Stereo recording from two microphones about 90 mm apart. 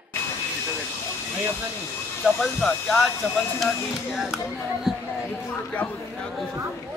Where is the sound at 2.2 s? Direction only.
5° left (ahead or behind).